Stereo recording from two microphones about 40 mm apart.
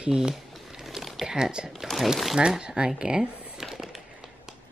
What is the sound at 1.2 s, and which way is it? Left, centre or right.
Speech, centre.